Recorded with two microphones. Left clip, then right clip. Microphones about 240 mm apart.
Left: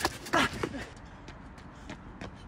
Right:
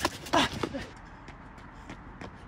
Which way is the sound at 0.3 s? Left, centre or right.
Right.